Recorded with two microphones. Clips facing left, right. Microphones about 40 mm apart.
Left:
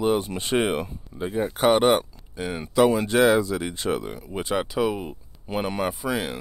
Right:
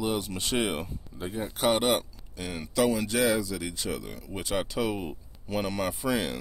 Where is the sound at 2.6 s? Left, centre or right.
Left.